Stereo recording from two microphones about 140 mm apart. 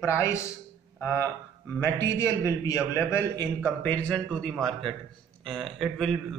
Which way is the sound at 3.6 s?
10° left (ahead or behind).